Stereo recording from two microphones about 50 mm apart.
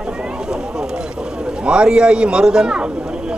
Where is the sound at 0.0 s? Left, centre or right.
Centre.